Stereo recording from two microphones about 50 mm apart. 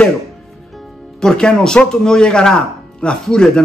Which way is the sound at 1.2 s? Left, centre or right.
Centre.